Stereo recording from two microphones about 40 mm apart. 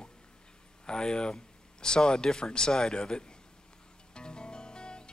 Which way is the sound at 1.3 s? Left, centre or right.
Centre.